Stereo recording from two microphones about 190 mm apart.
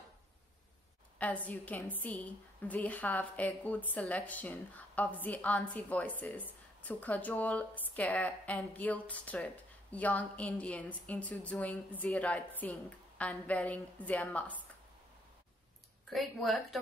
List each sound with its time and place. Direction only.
1.1 s a woman's voice: 10° left (ahead or behind)
16.1 s a woman's voice: centre (ahead or behind)